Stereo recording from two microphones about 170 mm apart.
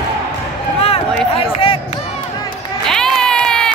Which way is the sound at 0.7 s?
35° left (ahead or behind).